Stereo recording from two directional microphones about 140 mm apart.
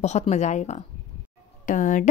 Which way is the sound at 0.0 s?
50° left (ahead or behind).